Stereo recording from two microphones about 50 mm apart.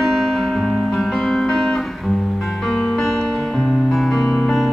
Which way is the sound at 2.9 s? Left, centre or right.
Centre.